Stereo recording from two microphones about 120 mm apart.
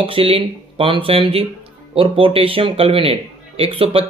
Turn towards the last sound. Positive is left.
turn(degrees=-50)  # may be behind; listen again after turning